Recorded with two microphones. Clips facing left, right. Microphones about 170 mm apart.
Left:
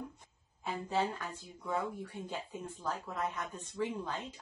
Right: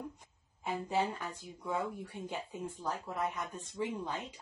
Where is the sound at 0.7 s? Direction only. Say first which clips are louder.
Right 1 dB; 15° right (ahead or behind).